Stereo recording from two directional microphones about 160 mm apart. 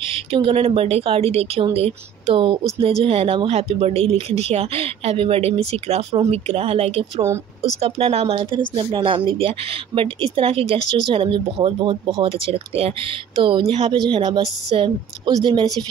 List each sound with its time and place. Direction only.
0.3 s speech: 35° right (ahead or behind)
10.8 s speech: 50° left (ahead or behind)
11.1 s speech: 35° right (ahead or behind)